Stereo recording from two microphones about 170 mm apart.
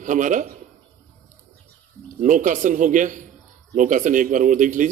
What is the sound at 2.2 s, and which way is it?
Speech, 50° right (ahead or behind).